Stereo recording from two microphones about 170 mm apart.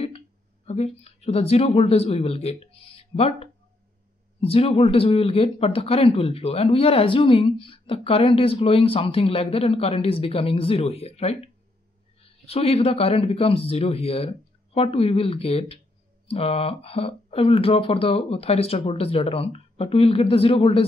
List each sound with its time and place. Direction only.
0.7 s speech: 40° left (ahead or behind)